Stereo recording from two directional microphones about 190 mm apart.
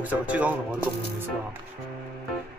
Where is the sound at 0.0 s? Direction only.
10° right (ahead or behind).